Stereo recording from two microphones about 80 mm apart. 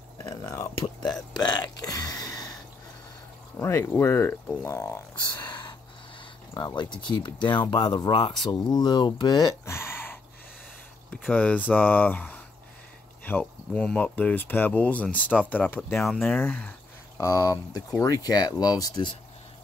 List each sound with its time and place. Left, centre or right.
0.4 s speech: left
1.3 s speech: left
3.5 s speech: left
4.6 s a sound: left
6.6 s speech: left
7.7 s speech: left
8.5 s speech: left
9.7 s a sound: left
11.1 s speech: centre
17.2 s speech: left